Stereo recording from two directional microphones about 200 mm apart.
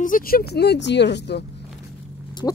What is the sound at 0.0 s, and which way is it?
Speech, 45° left (ahead or behind).